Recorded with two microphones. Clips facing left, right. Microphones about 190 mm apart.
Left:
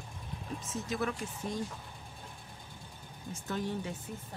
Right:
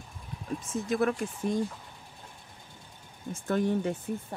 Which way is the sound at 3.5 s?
55° right (ahead or behind).